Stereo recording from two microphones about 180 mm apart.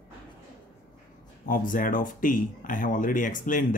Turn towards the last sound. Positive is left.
turn(degrees=50)  # may be behind; listen again after turning